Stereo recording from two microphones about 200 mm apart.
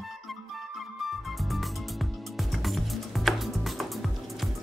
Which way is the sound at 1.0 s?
Centre (ahead or behind).